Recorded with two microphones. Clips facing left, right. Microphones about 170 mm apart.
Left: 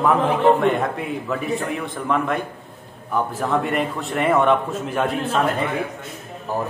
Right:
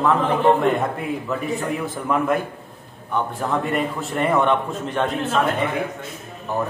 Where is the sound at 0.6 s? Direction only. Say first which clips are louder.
Even; centre (ahead or behind).